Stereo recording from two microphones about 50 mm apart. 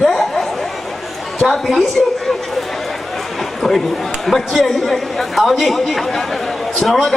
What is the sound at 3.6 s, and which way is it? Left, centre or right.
A man's voice, centre.